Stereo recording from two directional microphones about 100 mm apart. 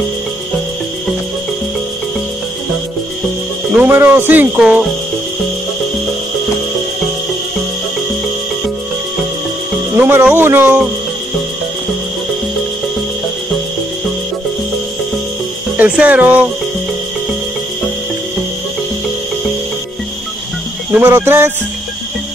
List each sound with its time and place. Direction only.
3.7 s speech: 20° right (ahead or behind)
9.9 s speech: 20° right (ahead or behind)
15.8 s speech: 15° right (ahead or behind)
20.9 s speech: 25° right (ahead or behind)